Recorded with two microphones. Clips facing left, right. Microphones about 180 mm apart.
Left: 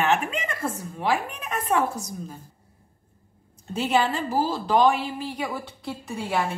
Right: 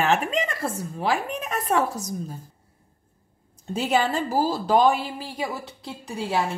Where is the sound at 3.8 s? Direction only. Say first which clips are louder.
Even; 40° right (ahead or behind).